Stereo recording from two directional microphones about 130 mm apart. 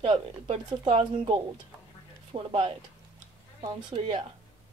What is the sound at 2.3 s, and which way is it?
Speech, 45° right (ahead or behind).